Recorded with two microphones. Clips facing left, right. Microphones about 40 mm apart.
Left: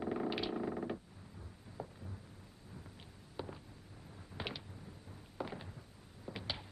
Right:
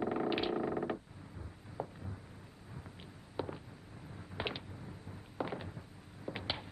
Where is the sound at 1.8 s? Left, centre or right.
Right.